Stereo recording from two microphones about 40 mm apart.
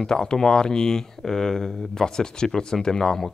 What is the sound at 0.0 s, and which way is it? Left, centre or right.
Speech, centre.